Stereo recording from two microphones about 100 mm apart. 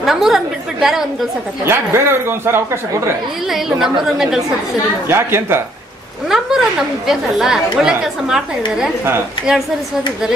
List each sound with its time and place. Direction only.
0.0 s a woman's voice: 5° right (ahead or behind)
1.6 s speech: 25° right (ahead or behind)
3.4 s a woman's voice: 5° right (ahead or behind)
5.0 s speech: 25° right (ahead or behind)
6.2 s a woman's voice: 5° right (ahead or behind)